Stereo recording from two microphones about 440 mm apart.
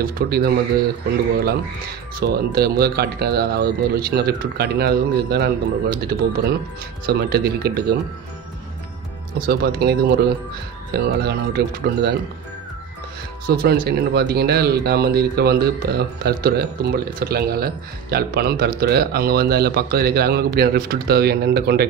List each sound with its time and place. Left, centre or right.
0.0 s speech: right
2.1 s speech: right
9.5 s speech: right
13.5 s speech: right